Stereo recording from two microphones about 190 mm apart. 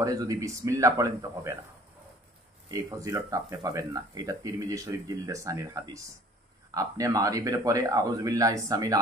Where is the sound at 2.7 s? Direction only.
15° right (ahead or behind).